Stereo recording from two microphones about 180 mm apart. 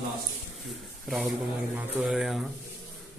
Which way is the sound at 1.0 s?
Centre (ahead or behind).